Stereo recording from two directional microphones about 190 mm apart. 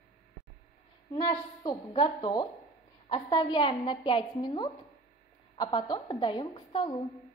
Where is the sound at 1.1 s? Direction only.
20° left (ahead or behind).